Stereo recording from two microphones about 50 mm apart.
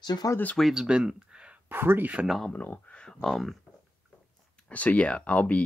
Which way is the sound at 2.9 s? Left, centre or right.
Centre.